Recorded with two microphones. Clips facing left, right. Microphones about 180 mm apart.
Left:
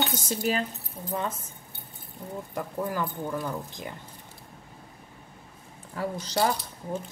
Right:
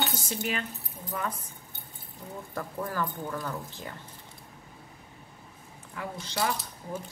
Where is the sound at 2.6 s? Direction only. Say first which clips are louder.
Left 2 dB; 15° left (ahead or behind).